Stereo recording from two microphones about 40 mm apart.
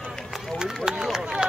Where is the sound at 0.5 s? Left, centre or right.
Centre.